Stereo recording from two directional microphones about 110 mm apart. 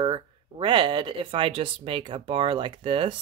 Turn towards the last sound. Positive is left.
turn(degrees=-50)  # may be behind; listen again after turning